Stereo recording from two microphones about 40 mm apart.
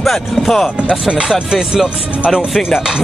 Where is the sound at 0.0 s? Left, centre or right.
Centre.